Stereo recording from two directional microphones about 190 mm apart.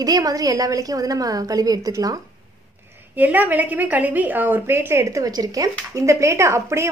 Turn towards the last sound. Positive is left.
turn(degrees=-15)  # may be behind; listen again after turning